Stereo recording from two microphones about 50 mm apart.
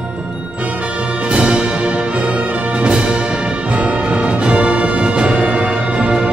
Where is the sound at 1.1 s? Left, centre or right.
Right.